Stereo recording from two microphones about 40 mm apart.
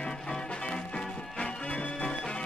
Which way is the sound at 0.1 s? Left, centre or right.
Centre.